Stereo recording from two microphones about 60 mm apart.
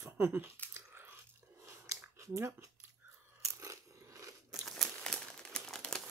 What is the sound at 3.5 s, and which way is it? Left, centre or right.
Crunch, right.